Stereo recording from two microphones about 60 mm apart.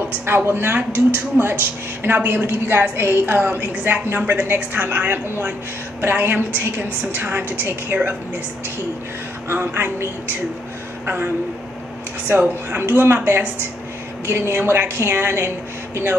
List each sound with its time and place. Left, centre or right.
0.1 s a woman's voice: right
9.5 s a woman's voice: right
11.1 s a woman's voice: right